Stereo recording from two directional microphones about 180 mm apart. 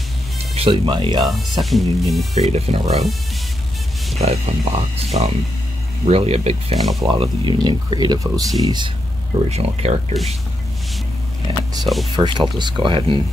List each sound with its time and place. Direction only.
0.6 s speech: 30° right (ahead or behind)
1.2 s speech: centre (ahead or behind)
2.3 s speech: 35° right (ahead or behind)
4.2 s speech: 35° right (ahead or behind)
9.5 s speech: 35° right (ahead or behind)
11.8 s speech: centre (ahead or behind)
12.2 s speech: 25° right (ahead or behind)